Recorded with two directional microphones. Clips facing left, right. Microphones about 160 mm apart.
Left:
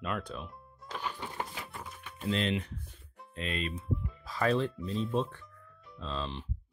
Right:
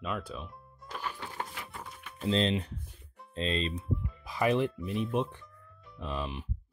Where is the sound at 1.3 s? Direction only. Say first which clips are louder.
Left 1 dB; centre (ahead or behind).